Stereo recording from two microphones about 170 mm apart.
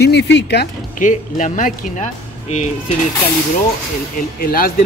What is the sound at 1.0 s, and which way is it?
Speech, 50° left (ahead or behind).